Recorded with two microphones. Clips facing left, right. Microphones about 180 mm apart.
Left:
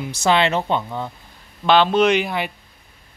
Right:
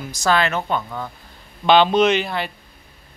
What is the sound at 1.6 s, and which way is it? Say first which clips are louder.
Speech: right 1 dB; centre (ahead or behind).